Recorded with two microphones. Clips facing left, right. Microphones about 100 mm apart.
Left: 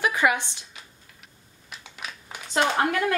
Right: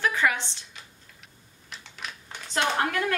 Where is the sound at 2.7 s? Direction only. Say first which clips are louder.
Left 3 dB; 10° left (ahead or behind).